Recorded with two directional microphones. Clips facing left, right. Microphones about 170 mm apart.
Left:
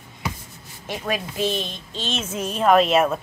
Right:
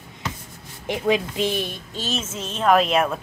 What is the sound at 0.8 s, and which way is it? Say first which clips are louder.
A woman's voice: right 6 dB; 20° right (ahead or behind).